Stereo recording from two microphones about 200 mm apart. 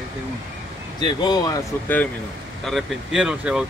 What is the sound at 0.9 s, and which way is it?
Speech, 20° left (ahead or behind).